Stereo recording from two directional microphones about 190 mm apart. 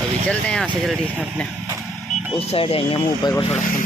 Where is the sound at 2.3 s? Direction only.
30° left (ahead or behind).